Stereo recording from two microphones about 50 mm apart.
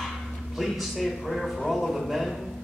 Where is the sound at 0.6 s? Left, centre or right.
Centre.